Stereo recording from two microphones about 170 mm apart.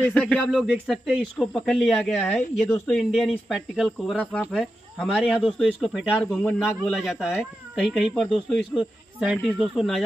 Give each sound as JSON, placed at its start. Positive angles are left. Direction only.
{"t": 0.0, "sound": "speech", "side_deg": 5}
{"t": 6.4, "sound": "speech", "side_deg": 0}